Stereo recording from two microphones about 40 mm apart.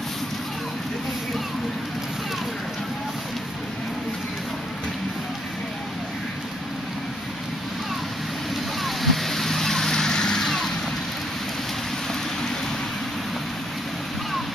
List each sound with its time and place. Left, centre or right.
8.8 s vehicle: centre